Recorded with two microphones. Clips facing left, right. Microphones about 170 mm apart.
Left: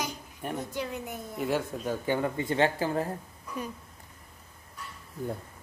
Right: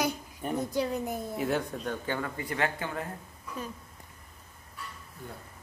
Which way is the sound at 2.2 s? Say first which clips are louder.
Left 5 dB; 25° left (ahead or behind).